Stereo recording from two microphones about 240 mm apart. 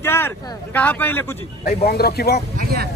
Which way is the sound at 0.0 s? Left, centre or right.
Centre.